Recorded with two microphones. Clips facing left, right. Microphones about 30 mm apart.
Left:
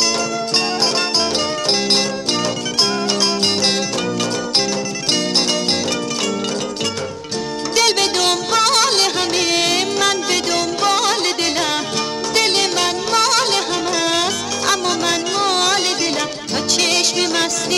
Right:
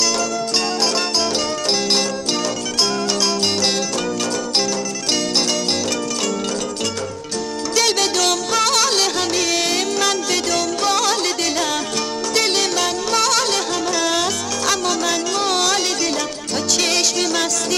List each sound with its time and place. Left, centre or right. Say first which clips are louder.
7.7 s music: left 2 dB; centre
12.4 s music: left 2 dB; left
16.8 s music: left 2 dB; left